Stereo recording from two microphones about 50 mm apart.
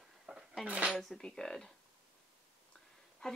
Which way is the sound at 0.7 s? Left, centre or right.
Right.